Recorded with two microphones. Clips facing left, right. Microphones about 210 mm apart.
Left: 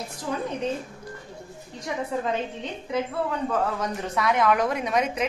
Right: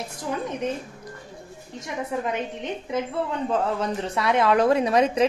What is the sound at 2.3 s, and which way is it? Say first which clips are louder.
Speech: right 1 dB; 20° right (ahead or behind).